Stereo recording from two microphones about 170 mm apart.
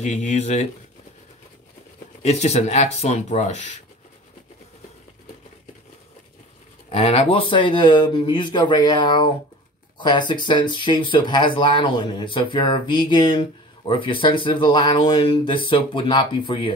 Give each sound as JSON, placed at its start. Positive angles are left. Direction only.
{"t": 0.0, "sound": "speech", "side_deg": 40}
{"t": 2.2, "sound": "speech", "side_deg": 40}
{"t": 6.9, "sound": "speech", "side_deg": 35}